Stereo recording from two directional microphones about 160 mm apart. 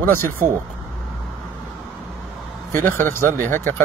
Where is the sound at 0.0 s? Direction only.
15° left (ahead or behind).